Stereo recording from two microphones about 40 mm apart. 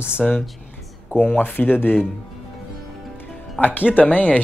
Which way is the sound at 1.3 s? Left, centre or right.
Left.